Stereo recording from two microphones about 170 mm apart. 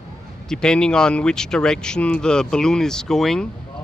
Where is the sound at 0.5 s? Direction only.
5° left (ahead or behind).